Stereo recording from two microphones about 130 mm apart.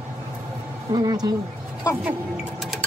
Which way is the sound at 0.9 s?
30° right (ahead or behind).